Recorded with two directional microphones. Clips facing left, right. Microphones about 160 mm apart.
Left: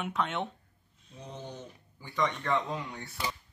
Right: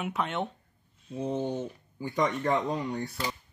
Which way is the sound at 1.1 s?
50° right (ahead or behind).